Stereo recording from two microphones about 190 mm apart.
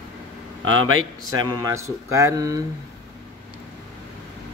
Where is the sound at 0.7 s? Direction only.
90° right.